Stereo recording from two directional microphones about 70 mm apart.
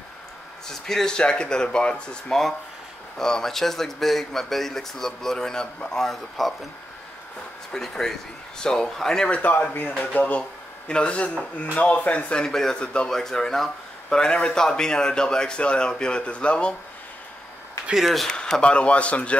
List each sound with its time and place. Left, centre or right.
0.7 s speech: centre
7.7 s speech: centre
18.0 s speech: centre
18.3 s speech: centre